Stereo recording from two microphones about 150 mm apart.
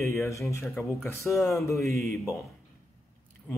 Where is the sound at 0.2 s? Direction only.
20° left (ahead or behind).